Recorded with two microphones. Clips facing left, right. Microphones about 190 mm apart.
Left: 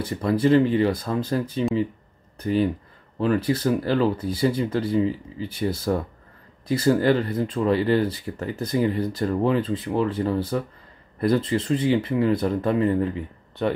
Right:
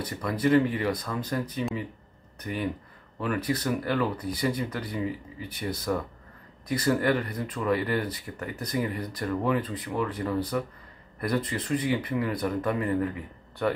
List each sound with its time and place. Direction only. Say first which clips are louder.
0.0 s speech: left 6 dB; 25° left (ahead or behind)